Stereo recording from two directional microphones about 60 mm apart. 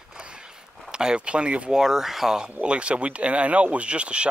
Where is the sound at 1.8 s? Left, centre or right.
Centre.